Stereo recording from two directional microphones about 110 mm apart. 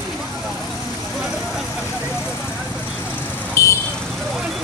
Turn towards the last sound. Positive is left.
turn(degrees=25)  # may be behind; listen again after turning